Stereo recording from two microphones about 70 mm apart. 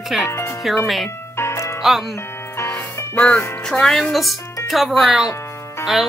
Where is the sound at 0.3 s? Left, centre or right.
Left.